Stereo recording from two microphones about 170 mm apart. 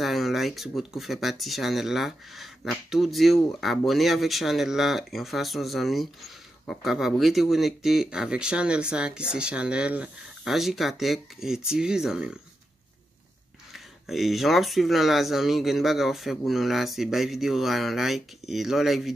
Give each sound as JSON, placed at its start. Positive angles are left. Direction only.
{"t": 0.0, "sound": "speech", "side_deg": 0}
{"t": 13.7, "sound": "speech", "side_deg": 0}